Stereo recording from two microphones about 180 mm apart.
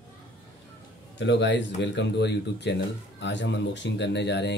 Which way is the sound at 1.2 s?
80° left.